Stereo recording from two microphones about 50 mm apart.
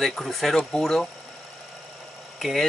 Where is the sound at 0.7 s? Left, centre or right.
Centre.